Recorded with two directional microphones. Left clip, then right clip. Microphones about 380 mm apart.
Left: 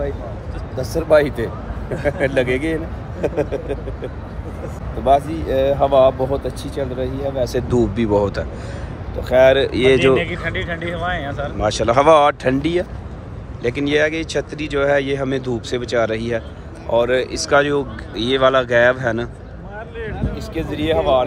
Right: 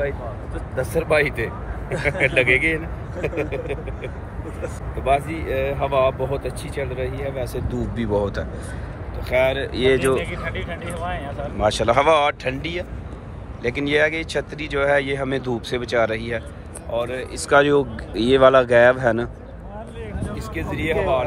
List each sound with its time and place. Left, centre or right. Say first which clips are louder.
0.9 s speech: left 5 dB; centre
10.1 s speech: left 5 dB; left
11.5 s speech: left 2 dB; centre
16.9 s speech: left 9 dB; centre
20.5 s speech: left 4 dB; centre